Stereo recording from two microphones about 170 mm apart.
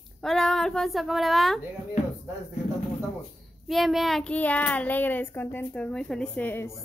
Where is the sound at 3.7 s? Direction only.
Centre (ahead or behind).